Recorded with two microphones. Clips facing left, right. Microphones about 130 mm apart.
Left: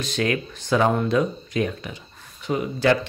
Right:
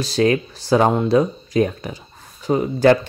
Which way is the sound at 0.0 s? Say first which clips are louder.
Right 7 dB; 35° right (ahead or behind).